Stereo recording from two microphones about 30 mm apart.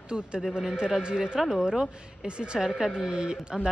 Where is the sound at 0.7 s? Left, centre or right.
Right.